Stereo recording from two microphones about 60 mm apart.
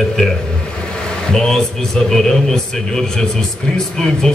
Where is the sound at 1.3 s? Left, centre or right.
Centre.